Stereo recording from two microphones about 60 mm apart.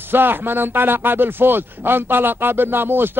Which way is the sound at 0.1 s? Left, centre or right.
Right.